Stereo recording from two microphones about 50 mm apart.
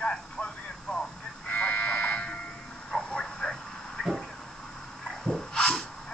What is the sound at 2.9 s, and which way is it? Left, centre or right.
Vehicle, centre.